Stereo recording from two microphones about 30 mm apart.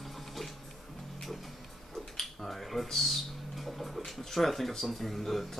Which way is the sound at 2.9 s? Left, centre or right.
Centre.